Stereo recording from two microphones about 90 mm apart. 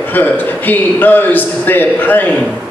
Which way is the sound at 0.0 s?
20° left (ahead or behind).